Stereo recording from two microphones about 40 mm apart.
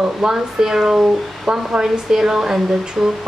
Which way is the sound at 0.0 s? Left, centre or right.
Centre.